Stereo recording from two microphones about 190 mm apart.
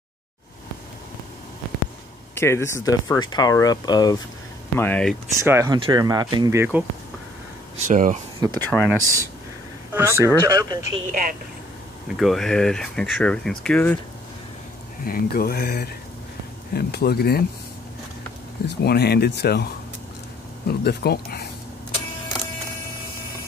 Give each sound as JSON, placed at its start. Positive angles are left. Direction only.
{"t": 2.3, "sound": "speech", "side_deg": 15}
{"t": 4.7, "sound": "speech", "side_deg": 10}
{"t": 5.4, "sound": "speech", "side_deg": -15}
{"t": 7.7, "sound": "speech", "side_deg": -40}
{"t": 8.4, "sound": "speech", "side_deg": -20}
{"t": 8.6, "sound": "speech", "side_deg": 5}
{"t": 9.0, "sound": "speech", "side_deg": -15}
{"t": 11.1, "sound": "speech", "side_deg": -45}
{"t": 12.2, "sound": "speech", "side_deg": 0}
{"t": 15.0, "sound": "speech", "side_deg": 50}
{"t": 18.7, "sound": "speech", "side_deg": 60}
{"t": 20.8, "sound": "speech", "side_deg": 55}